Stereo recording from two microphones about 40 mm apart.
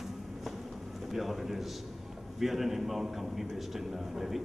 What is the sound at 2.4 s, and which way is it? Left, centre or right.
A man's voice, centre.